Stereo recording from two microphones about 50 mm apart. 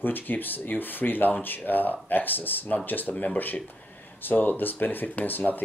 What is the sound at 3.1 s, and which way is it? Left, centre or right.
Speech, left.